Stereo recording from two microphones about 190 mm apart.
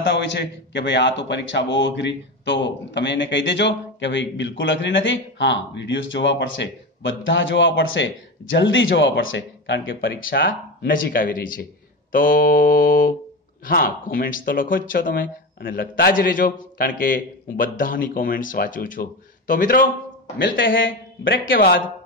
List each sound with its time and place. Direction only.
0.0 s speech: 65° left (ahead or behind); by 9.9 s 85° left
10.3 s speech: 75° left (ahead or behind)
10.9 s speech: 45° left (ahead or behind)
20.3 s speech: 75° left (ahead or behind)
21.5 s speech: 55° left (ahead or behind)